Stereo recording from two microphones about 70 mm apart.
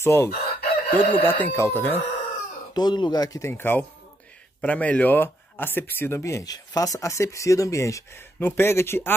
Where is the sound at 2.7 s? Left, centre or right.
Left.